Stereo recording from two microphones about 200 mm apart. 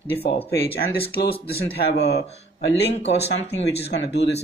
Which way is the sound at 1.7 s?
55° left (ahead or behind).